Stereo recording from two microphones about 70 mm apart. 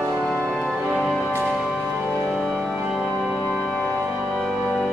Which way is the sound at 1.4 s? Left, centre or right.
Centre.